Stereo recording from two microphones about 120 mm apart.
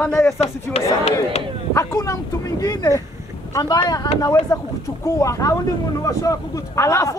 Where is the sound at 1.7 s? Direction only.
30° left (ahead or behind).